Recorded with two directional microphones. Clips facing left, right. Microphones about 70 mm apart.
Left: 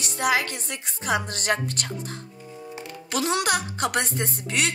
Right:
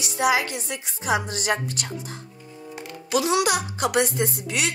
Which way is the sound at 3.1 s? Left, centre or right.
Left.